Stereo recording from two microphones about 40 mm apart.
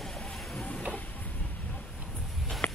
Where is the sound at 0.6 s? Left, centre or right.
Left.